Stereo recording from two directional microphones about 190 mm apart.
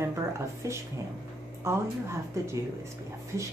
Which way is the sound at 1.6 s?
15° right (ahead or behind).